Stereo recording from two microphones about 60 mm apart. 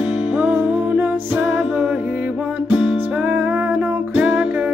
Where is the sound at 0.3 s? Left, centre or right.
Right.